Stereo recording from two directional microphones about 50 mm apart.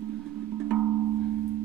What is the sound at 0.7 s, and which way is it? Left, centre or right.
Music, centre.